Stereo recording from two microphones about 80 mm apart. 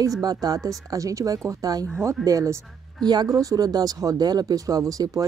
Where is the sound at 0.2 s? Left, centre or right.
Right.